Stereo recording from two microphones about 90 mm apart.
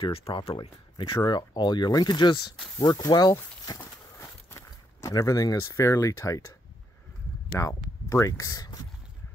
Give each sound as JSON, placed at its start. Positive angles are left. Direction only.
{"t": 0.0, "sound": "speech", "side_deg": 75}
{"t": 4.2, "sound": "a sound", "side_deg": 25}
{"t": 5.0, "sound": "speech", "side_deg": 40}
{"t": 7.5, "sound": "speech", "side_deg": 35}